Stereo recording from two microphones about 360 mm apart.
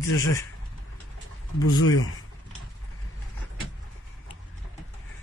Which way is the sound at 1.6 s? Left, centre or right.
Left.